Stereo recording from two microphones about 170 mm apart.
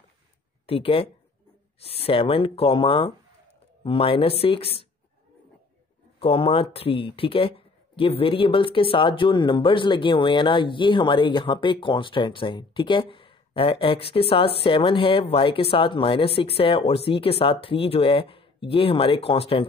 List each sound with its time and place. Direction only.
0.7 s speech: 30° left (ahead or behind)
6.1 s speech: 30° left (ahead or behind)